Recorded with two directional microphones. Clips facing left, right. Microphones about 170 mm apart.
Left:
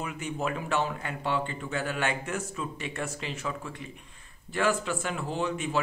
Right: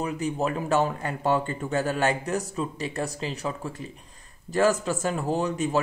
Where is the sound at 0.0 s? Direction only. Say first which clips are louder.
Right 5 dB; 35° right (ahead or behind).